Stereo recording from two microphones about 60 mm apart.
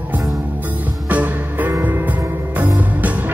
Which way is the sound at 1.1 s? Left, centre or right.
Right.